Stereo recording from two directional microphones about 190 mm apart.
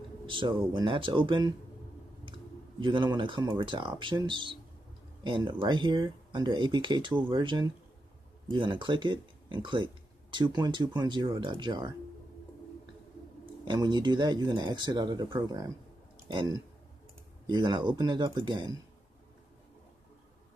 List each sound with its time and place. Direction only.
0.3 s speech: 25° right (ahead or behind)
2.8 s speech: 25° right (ahead or behind)
13.7 s speech: 20° right (ahead or behind)